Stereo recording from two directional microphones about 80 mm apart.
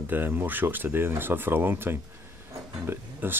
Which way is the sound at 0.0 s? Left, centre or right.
Right.